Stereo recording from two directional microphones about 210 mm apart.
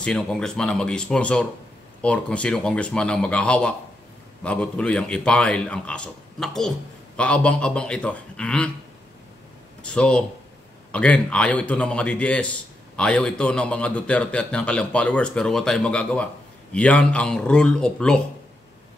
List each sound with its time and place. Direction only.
0.0 s a man's voice: 5° left (ahead or behind)
9.8 s a man's voice: 5° left (ahead or behind)